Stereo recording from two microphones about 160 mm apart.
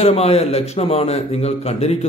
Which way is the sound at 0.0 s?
40° left (ahead or behind).